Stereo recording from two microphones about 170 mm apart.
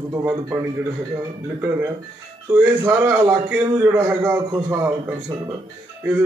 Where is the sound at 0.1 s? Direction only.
15° right (ahead or behind).